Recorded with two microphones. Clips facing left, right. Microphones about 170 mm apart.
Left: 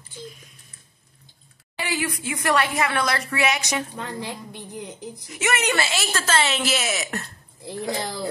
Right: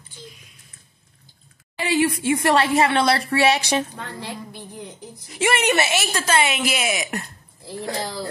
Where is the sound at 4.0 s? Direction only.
15° left (ahead or behind).